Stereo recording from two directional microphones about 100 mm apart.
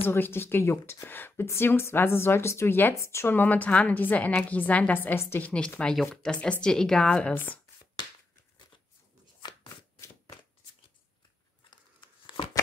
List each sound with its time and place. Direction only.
0.0 s a woman's voice: 20° left (ahead or behind)
5.8 s a woman's voice: 5° left (ahead or behind)
9.5 s shuffling cards: 45° left (ahead or behind)